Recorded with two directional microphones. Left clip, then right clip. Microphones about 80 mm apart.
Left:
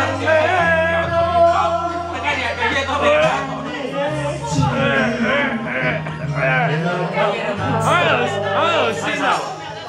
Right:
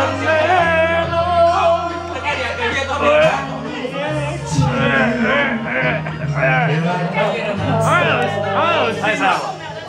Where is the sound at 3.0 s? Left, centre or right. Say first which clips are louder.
Right 3 dB; centre.